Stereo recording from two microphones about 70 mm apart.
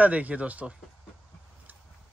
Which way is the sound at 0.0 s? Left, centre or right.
Right.